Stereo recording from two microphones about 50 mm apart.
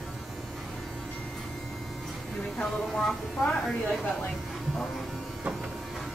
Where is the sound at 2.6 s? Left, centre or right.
Centre.